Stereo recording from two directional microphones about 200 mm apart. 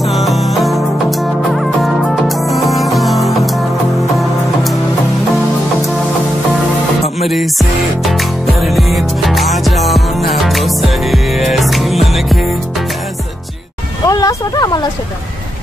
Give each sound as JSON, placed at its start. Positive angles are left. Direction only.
{"t": 0.0, "sound": "music", "side_deg": 0}
{"t": 7.2, "sound": "music", "side_deg": 0}
{"t": 14.0, "sound": "a sound", "side_deg": 20}